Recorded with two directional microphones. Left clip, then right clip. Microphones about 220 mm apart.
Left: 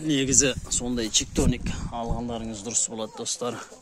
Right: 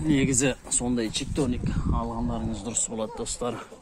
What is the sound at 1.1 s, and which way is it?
Speech, 40° left (ahead or behind).